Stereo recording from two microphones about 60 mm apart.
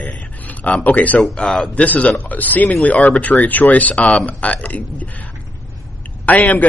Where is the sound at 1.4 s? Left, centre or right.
Centre.